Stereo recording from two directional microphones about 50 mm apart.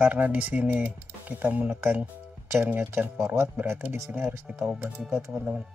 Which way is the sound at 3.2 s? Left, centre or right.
Right.